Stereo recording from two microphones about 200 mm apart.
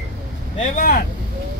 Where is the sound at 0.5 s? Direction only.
40° left (ahead or behind).